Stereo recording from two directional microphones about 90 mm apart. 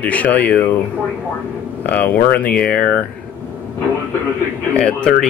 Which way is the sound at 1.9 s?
15° left (ahead or behind).